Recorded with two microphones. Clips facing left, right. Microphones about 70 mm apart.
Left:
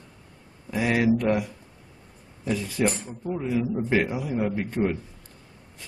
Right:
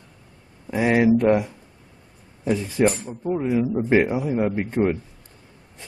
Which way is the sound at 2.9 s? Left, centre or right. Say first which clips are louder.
Right 3 dB; centre.